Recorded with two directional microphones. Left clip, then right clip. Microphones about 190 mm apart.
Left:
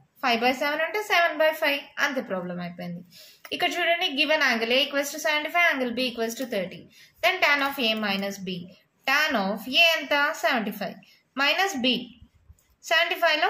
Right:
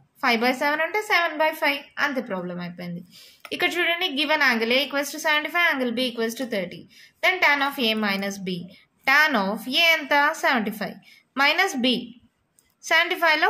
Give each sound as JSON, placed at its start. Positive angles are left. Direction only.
{"t": 0.2, "sound": "a woman's voice", "side_deg": -30}
{"t": 12.8, "sound": "a woman's voice", "side_deg": -35}